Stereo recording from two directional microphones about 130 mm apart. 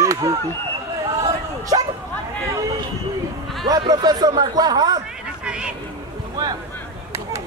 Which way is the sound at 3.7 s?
30° right (ahead or behind).